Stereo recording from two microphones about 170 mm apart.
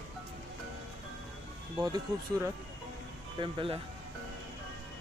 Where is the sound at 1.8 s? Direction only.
20° right (ahead or behind).